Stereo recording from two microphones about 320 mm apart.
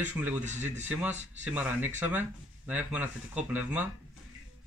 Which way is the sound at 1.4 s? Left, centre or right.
Centre.